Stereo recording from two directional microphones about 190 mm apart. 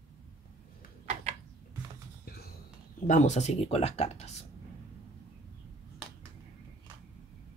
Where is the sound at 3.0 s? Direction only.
40° left (ahead or behind).